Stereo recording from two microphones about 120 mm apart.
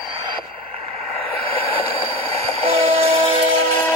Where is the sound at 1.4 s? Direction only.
55° right (ahead or behind).